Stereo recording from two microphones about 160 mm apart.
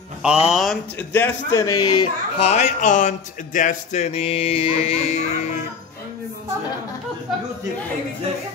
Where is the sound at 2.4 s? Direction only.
45° left (ahead or behind).